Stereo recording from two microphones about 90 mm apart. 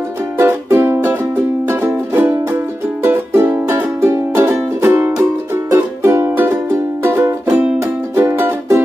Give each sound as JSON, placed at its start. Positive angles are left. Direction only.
{"t": 0.4, "sound": "music", "side_deg": -25}